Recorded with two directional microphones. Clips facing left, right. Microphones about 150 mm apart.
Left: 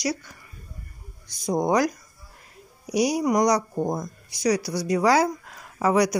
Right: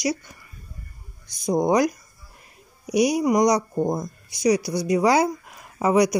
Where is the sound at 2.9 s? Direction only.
15° right (ahead or behind).